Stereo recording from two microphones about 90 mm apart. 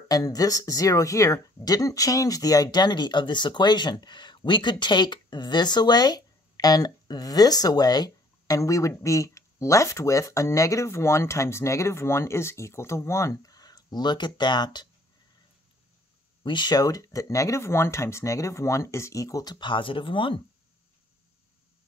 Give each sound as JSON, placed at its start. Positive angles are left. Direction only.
{"t": 0.1, "sound": "speech", "side_deg": 40}
{"t": 16.4, "sound": "speech", "side_deg": 55}
{"t": 19.5, "sound": "speech", "side_deg": 60}